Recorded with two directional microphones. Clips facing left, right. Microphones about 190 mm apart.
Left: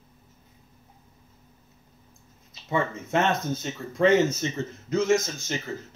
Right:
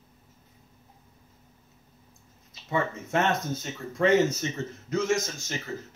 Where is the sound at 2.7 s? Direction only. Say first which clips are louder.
Left 2 dB; 25° left (ahead or behind).